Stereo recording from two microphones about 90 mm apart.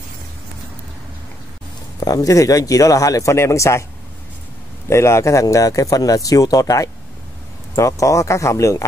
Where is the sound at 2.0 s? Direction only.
40° left (ahead or behind).